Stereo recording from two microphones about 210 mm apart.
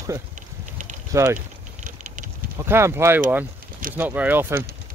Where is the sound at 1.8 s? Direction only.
35° right (ahead or behind).